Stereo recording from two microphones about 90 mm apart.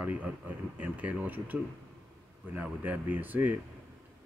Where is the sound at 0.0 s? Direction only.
15° right (ahead or behind).